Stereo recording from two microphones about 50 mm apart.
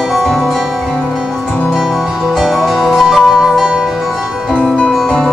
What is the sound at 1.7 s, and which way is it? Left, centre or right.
Music, centre.